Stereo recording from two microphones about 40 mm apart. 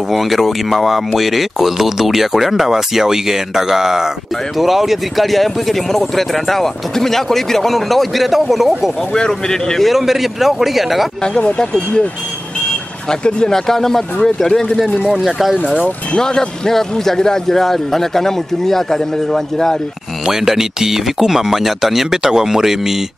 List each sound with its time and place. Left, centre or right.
0.1 s speech: centre
9.3 s a man's voice: centre
9.8 s speech: centre
11.3 s speech: left
13.1 s speech: centre
13.7 s a man's voice: centre
15.2 s speech: centre
15.5 s speech: right
16.2 s a man's voice: centre
20.2 s speech: centre